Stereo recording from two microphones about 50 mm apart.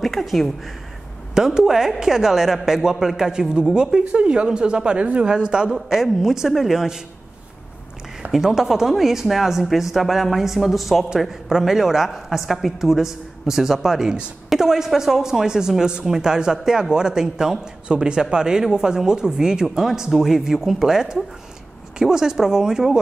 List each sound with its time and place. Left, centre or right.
0.0 s speech: centre
1.3 s speech: centre
5.7 s a woman's voice: centre
8.3 s a woman's voice: centre